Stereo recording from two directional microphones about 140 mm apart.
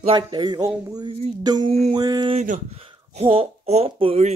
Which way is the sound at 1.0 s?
50° right (ahead or behind).